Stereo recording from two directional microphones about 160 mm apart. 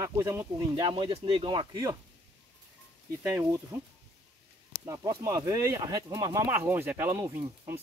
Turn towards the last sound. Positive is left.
turn(degrees=-20)  # may be behind; listen again after turning